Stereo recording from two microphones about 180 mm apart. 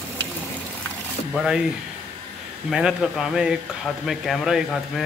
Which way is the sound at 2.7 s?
5° right (ahead or behind).